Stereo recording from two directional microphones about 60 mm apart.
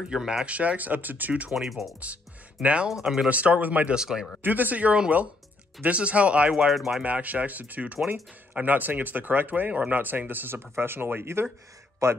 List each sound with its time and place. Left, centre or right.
0.1 s speech: centre
0.5 s speech: right
1.5 s speech: centre
2.6 s speech: centre
2.9 s speech: centre
3.3 s speech: right
3.9 s speech: centre
4.4 s speech: right
6.5 s speech: centre
7.0 s speech: right
12.0 s a man's voice: right